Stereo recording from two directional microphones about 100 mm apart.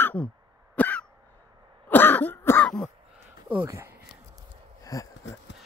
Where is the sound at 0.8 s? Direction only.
15° left (ahead or behind).